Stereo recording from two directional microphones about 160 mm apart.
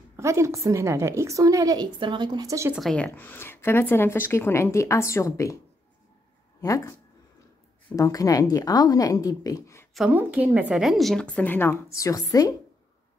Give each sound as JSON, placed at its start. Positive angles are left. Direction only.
{"t": 0.2, "sound": "a woman's voice", "side_deg": -15}
{"t": 2.7, "sound": "speech", "side_deg": 0}
{"t": 3.2, "sound": "speech", "side_deg": 15}
{"t": 6.6, "sound": "a woman's voice", "side_deg": 20}
{"t": 9.9, "sound": "a woman's voice", "side_deg": -5}